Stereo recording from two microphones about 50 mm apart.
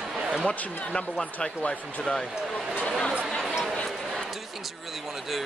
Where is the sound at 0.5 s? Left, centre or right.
Left.